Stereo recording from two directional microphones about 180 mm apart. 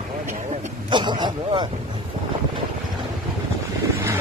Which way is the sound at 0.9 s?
25° right (ahead or behind).